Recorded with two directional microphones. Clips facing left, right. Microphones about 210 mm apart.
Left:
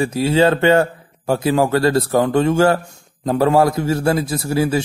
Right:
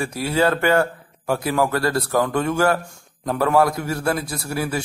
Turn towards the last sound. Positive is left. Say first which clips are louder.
# left 7 dB
turn(degrees=25)  # may be behind; listen again after turning